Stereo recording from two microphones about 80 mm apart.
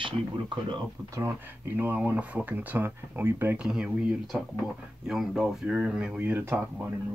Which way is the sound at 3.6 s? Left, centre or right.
Centre.